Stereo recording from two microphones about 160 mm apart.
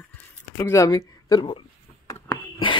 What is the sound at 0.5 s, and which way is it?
Speech, 15° left (ahead or behind).